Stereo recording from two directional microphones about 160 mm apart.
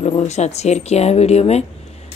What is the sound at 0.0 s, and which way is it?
Speech, 45° left (ahead or behind).